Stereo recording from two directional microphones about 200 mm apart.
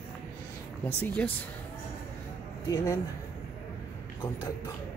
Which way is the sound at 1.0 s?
10° left (ahead or behind).